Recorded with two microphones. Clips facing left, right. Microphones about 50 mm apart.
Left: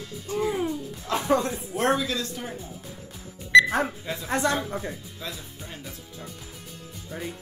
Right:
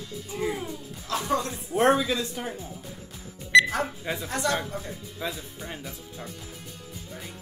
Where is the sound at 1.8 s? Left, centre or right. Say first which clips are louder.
Right 3 dB; centre.